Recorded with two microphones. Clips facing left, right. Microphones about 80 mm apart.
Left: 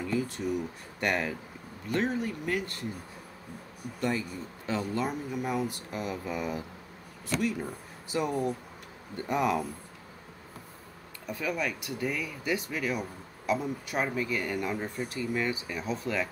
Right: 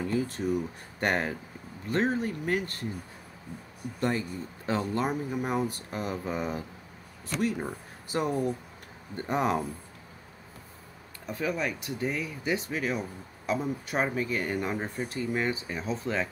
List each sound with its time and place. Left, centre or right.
0.0 s a sound: right
1.0 s speech: right
4.0 s speech: right
11.2 s speech: right